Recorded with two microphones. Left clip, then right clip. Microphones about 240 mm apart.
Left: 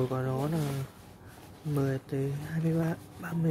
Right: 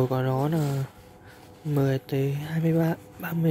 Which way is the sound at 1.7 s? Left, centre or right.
Centre.